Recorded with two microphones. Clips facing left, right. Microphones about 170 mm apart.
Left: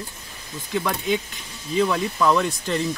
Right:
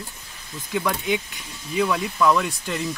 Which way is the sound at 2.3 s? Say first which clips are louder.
Left 2 dB; centre (ahead or behind).